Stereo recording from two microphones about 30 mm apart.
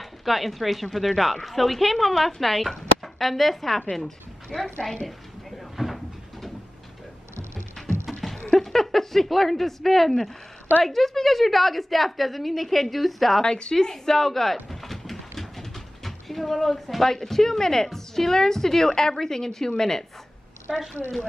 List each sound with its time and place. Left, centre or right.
0.0 s a woman's voice: centre
5.8 s cupboard open or close: centre
8.2 s a sound: centre
8.5 s a woman's voice: centre
13.4 s a sound: left; by 17.1 s centre
17.1 s a woman's voice: centre
20.7 s a woman's voice: centre